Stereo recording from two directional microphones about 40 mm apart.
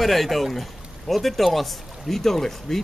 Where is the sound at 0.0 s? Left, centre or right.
Centre.